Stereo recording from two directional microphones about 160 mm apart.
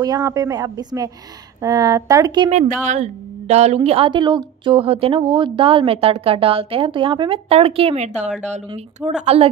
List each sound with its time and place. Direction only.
0.0 s a woman's voice: 25° right (ahead or behind)
2.5 s a woman's voice: 45° right (ahead or behind)